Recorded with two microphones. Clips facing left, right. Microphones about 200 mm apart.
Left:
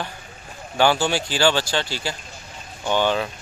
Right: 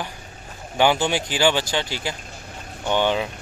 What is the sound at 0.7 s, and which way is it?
Speech, 20° right (ahead or behind).